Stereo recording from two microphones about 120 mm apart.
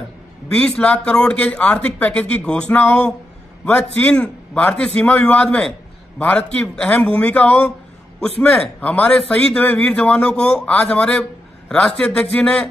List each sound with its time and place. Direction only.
0.6 s speech: 10° left (ahead or behind)